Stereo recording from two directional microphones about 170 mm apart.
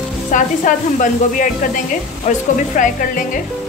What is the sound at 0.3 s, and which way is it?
Speech, 50° left (ahead or behind).